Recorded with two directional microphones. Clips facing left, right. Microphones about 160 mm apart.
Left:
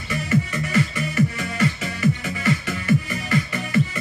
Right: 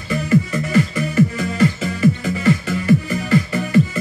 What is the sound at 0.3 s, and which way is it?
Music, 35° right (ahead or behind).